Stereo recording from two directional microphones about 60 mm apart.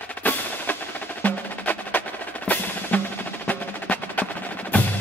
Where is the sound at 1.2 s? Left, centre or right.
Left.